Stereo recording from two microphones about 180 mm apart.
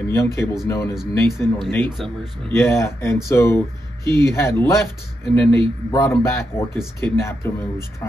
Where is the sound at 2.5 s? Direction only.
15° left (ahead or behind).